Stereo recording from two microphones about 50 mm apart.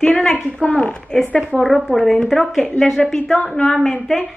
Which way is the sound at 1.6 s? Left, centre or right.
Centre.